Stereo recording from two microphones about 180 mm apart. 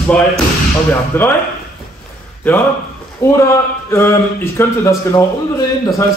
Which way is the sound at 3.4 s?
15° left (ahead or behind).